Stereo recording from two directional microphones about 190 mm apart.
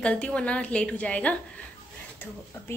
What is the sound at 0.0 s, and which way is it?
Speech, 5° left (ahead or behind).